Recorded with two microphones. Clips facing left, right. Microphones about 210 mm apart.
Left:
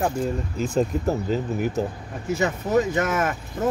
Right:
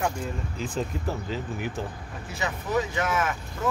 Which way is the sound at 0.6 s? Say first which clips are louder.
Left 8 dB; 45° left (ahead or behind).